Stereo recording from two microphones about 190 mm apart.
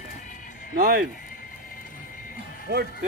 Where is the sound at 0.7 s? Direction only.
50° right (ahead or behind).